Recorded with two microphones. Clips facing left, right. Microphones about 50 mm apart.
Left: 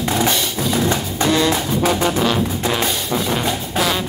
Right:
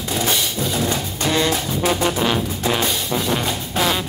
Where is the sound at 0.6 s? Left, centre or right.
Left.